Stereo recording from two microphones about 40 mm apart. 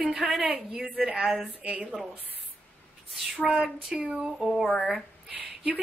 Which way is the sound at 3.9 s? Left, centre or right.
Centre.